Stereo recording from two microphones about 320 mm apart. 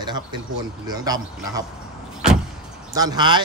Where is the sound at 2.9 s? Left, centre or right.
Centre.